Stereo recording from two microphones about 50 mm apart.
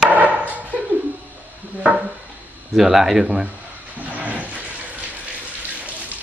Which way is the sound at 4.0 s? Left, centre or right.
Right.